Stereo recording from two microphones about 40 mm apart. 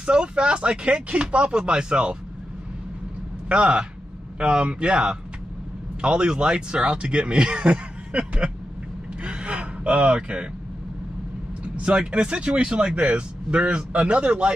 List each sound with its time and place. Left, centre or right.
0.0 s speech: right
3.4 s speech: right
9.2 s gasp: right
10.1 s speech: right
11.6 s speech: right